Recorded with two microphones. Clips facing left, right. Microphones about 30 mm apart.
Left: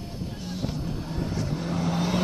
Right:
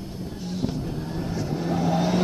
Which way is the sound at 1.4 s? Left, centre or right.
Centre.